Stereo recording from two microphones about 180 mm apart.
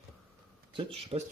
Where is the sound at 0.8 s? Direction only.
35° right (ahead or behind).